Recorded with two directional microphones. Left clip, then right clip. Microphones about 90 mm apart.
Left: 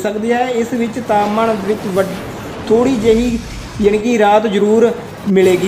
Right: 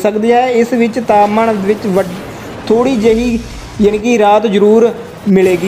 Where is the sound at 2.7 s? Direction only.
55° right (ahead or behind).